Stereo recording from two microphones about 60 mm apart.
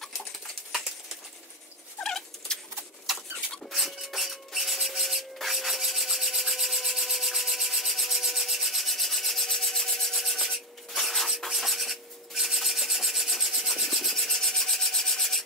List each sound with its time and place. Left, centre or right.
2.0 s bird: centre
3.1 s rodents: centre
3.7 s rub: centre